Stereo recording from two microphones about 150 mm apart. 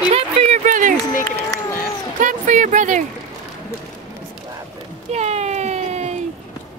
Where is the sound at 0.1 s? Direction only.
50° right (ahead or behind).